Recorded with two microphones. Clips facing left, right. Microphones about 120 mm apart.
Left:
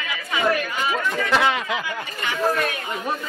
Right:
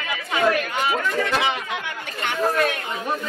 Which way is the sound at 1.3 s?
75° left (ahead or behind).